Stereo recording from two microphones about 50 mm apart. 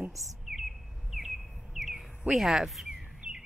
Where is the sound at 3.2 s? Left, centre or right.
Right.